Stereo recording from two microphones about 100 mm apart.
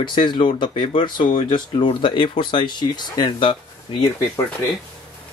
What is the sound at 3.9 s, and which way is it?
Speech, 60° left (ahead or behind).